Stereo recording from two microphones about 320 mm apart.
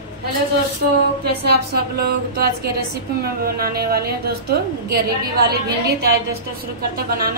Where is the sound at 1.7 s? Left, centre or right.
Right.